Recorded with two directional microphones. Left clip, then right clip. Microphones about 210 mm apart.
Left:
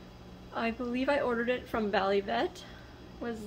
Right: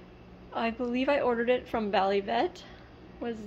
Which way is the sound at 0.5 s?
15° right (ahead or behind).